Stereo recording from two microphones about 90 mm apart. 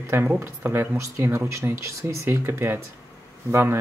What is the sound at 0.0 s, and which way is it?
Speech, 25° right (ahead or behind).